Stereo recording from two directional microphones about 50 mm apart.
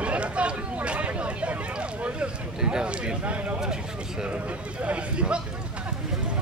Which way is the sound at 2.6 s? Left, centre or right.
Centre.